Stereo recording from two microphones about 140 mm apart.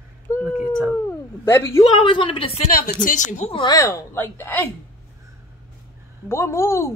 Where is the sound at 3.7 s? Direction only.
20° left (ahead or behind).